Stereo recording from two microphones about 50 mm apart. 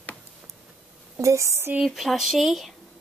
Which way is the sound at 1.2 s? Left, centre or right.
Right.